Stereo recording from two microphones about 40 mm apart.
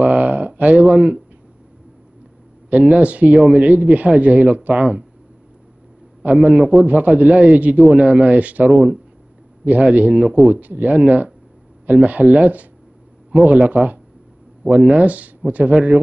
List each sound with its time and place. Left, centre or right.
0.0 s a sound: right
2.7 s a man's voice: right
6.3 s a man's voice: right
6.7 s a man's voice: right